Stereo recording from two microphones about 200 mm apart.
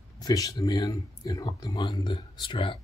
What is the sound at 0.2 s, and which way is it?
Speech, 20° left (ahead or behind).